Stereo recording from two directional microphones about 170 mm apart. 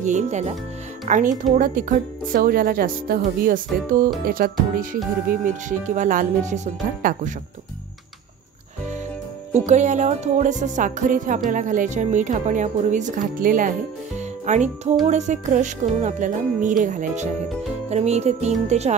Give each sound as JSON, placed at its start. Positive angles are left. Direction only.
{"t": 0.0, "sound": "music", "side_deg": -45}
{"t": 1.0, "sound": "speech", "side_deg": -45}
{"t": 7.0, "sound": "speech", "side_deg": -55}
{"t": 9.5, "sound": "speech", "side_deg": -45}
{"t": 17.8, "sound": "music", "side_deg": -40}